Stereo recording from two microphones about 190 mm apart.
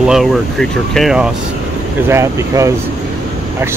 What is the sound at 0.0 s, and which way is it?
Speech, centre (ahead or behind).